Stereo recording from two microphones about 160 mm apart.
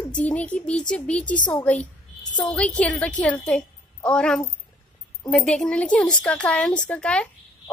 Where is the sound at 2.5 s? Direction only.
5° left (ahead or behind).